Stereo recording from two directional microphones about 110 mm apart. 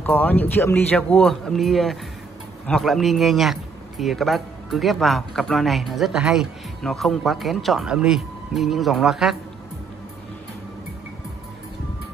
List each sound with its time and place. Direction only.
0.0 s speech: 15° left (ahead or behind); by 9.4 s 5° right (ahead or behind)